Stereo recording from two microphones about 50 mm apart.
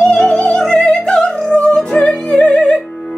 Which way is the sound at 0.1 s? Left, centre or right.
Centre.